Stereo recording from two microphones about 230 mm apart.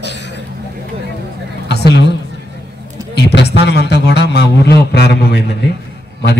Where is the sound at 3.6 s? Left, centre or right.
Left.